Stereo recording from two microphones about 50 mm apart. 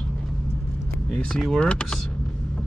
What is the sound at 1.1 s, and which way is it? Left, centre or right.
Speech, centre.